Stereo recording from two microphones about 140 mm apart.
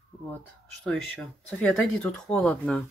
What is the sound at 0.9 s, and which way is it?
Speech, 5° left (ahead or behind).